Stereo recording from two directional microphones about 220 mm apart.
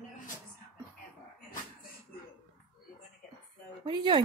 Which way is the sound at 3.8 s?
20° right (ahead or behind).